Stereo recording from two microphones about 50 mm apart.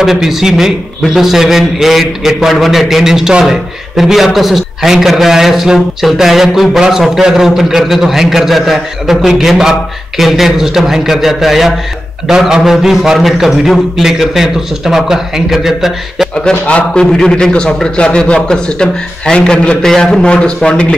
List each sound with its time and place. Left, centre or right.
0.0 s a man's voice: centre
16.4 s a man's voice: left
17.0 s a man's voice: centre